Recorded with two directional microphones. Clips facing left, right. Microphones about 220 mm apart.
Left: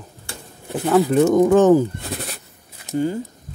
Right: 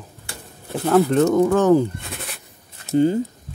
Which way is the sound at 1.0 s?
15° left (ahead or behind).